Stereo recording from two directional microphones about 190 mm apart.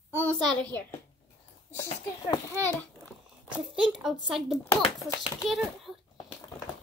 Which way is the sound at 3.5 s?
5° right (ahead or behind).